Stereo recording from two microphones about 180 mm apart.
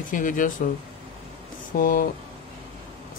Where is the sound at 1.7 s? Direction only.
50° left (ahead or behind).